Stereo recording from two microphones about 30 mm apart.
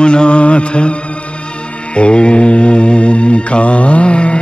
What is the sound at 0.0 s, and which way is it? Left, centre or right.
Mantra, left.